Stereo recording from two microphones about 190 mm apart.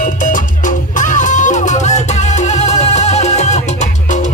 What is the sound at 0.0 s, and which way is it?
Music, 40° left (ahead or behind).